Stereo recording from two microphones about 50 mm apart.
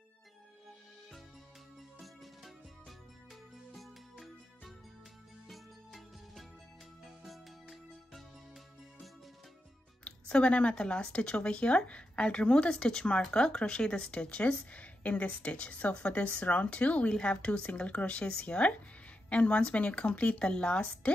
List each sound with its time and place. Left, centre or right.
3.7 s music: centre
10.0 s speech: left